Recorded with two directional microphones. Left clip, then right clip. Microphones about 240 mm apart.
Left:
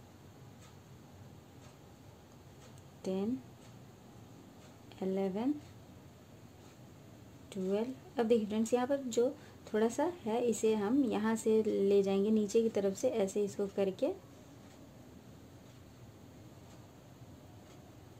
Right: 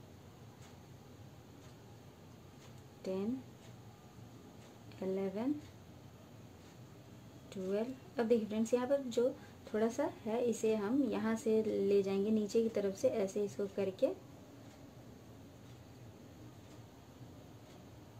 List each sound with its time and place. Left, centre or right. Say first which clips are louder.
5.1 s speech: left 3 dB; left
7.4 s speech: left 2 dB; left